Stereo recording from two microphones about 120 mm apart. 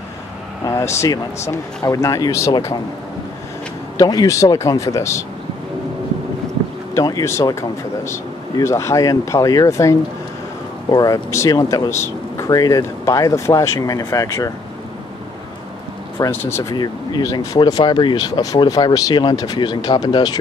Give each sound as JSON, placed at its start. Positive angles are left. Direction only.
{"t": 0.7, "sound": "speech", "side_deg": 25}
{"t": 4.0, "sound": "speech", "side_deg": 30}
{"t": 7.0, "sound": "speech", "side_deg": 30}
{"t": 16.2, "sound": "speech", "side_deg": 20}
{"t": 16.7, "sound": "speech", "side_deg": 35}